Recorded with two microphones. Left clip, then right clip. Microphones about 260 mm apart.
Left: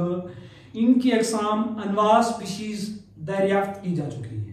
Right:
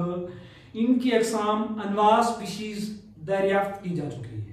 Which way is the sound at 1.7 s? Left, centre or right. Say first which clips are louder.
Left 1 dB; centre.